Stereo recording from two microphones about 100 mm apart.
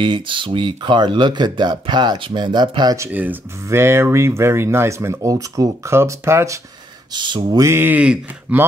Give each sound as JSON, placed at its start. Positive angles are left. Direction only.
{"t": 0.0, "sound": "speech", "side_deg": -55}
{"t": 3.1, "sound": "speech", "side_deg": -15}
{"t": 7.1, "sound": "speech", "side_deg": -50}
{"t": 7.5, "sound": "speech", "side_deg": -25}